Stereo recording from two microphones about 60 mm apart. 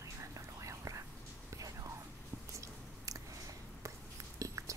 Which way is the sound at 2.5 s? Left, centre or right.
Right.